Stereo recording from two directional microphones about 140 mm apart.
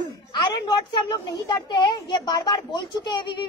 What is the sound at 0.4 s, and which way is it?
A woman's voice, 35° left (ahead or behind).